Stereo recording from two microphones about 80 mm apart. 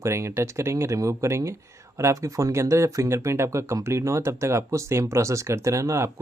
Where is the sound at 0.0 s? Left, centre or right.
Right.